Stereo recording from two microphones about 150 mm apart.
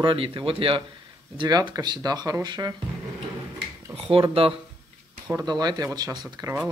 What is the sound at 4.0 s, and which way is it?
Speech, 40° right (ahead or behind).